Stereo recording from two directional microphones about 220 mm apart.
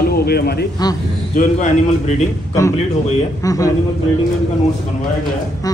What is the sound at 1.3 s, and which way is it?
Speech, 35° left (ahead or behind).